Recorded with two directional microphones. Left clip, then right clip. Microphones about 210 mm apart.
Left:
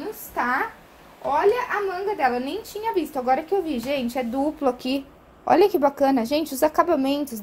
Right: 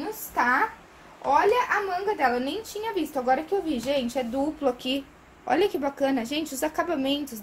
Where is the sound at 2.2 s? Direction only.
25° left (ahead or behind).